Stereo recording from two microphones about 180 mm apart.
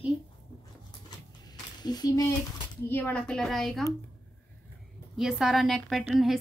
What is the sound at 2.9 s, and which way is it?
Speech, 10° left (ahead or behind).